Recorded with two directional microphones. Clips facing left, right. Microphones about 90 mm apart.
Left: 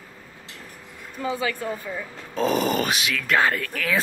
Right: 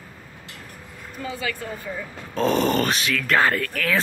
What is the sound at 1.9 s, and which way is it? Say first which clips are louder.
Speech: right 1 dB; 5° left (ahead or behind).